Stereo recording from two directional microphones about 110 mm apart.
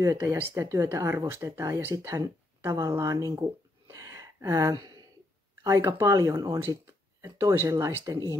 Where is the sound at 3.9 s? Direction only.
30° right (ahead or behind).